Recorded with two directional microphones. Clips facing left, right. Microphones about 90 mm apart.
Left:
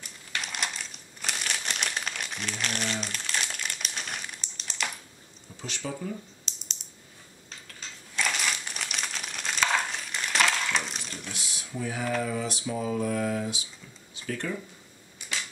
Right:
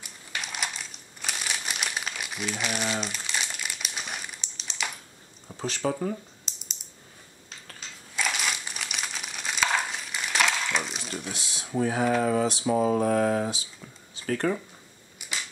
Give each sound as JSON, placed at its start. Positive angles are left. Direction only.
{"t": 0.3, "sound": "crumpling", "side_deg": 0}
{"t": 5.6, "sound": "mantra", "side_deg": -40}
{"t": 6.4, "sound": "typing", "side_deg": -5}
{"t": 8.2, "sound": "crumpling", "side_deg": -5}
{"t": 11.7, "sound": "speech", "side_deg": -40}
{"t": 12.2, "sound": "mantra", "side_deg": -45}
{"t": 15.1, "sound": "a sound", "side_deg": -10}